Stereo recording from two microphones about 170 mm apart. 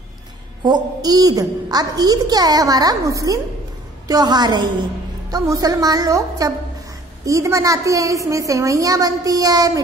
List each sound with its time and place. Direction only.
0.7 s a child's voice: 25° right (ahead or behind)